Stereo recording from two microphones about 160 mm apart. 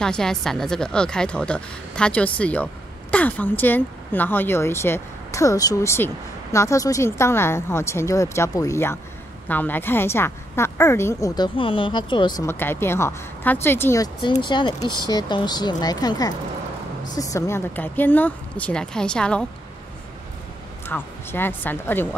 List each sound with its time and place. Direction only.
0.0 s speech: 5° left (ahead or behind)
20.8 s speech: 15° left (ahead or behind)